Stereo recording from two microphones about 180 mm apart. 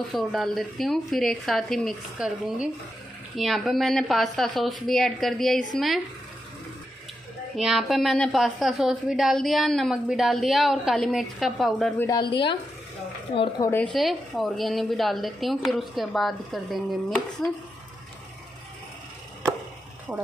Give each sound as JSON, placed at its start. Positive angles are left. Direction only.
{"t": 0.1, "sound": "a woman's voice", "side_deg": 0}
{"t": 7.5, "sound": "a woman's voice", "side_deg": 0}
{"t": 12.0, "sound": "a woman's voice", "side_deg": 25}
{"t": 13.9, "sound": "a woman's voice", "side_deg": 0}